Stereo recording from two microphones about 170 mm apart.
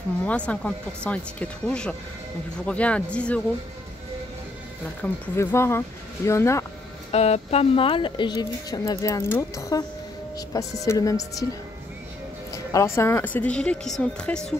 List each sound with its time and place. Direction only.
0.2 s speech: 5° left (ahead or behind)
5.0 s speech: 15° left (ahead or behind)
7.1 s speech: 40° left (ahead or behind); by 11.4 s 20° left (ahead or behind)
12.7 s speech: 15° left (ahead or behind)